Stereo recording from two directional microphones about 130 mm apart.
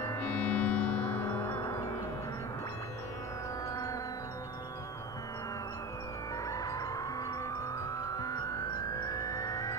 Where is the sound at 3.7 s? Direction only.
25° left (ahead or behind).